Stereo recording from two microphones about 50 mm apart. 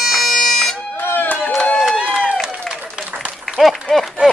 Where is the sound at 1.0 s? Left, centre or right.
Left.